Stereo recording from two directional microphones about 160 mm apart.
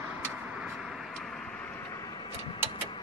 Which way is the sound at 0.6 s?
5° right (ahead or behind).